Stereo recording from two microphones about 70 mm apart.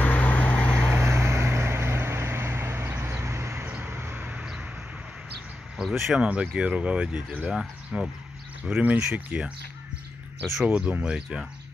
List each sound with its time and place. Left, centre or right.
0.0 s vehicle: left
0.8 s vehicle: right
3.0 s a sound: right
3.6 s a sound: right
5.8 s speech: centre
6.2 s speech: centre
8.6 s speech: right
10.6 s speech: centre